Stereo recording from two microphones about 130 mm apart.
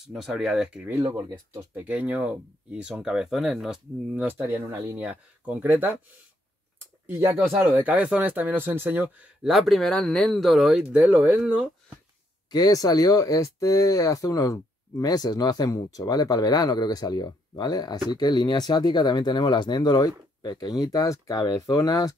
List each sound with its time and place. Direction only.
0.1 s speech: centre (ahead or behind)
1.1 s speech: 20° right (ahead or behind)
6.8 s a sound: 20° right (ahead or behind)
7.5 s speech: 15° right (ahead or behind)
12.4 s speech: 30° left (ahead or behind)